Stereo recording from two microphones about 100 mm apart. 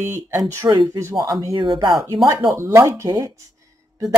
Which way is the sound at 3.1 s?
40° right (ahead or behind).